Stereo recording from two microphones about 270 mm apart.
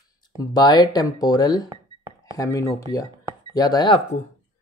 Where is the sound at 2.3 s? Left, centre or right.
Centre.